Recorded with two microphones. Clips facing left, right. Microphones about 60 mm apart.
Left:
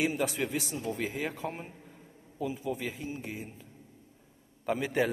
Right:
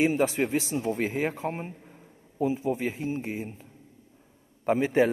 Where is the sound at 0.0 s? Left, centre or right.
Right.